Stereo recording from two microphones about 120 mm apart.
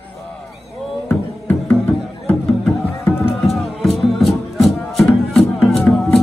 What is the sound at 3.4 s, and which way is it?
Music, centre (ahead or behind).